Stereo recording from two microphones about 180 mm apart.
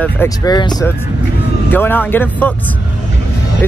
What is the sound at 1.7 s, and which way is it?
Speech, 10° left (ahead or behind).